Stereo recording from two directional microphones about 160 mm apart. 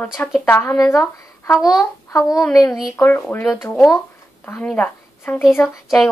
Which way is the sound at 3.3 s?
10° left (ahead or behind).